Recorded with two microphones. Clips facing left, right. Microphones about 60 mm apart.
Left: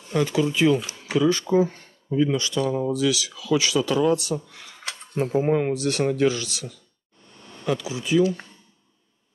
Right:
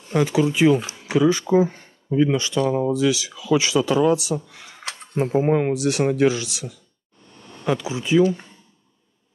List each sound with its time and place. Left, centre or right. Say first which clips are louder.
0.1 s speech: right 3 dB; right
4.8 s speech: right 2 dB; right
7.6 s speech: right 3 dB; right